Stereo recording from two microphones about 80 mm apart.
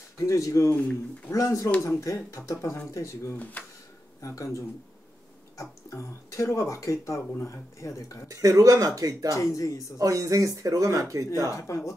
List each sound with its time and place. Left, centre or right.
0.2 s speech: left
0.7 s speech: centre
1.3 s speech: left
3.3 s speech: centre
4.2 s speech: left
8.3 s speech: right
9.3 s speech: left
9.9 s speech: right
11.5 s speech: left